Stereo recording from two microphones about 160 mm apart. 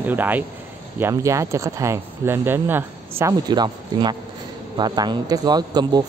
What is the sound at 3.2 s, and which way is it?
Speech, 25° right (ahead or behind).